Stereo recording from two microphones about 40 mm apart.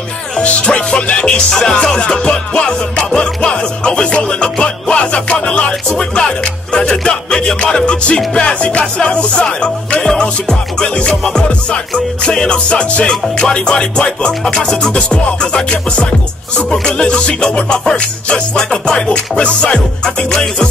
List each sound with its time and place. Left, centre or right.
0.4 s music: left
1.5 s music: centre
2.0 s music: left
3.1 s music: centre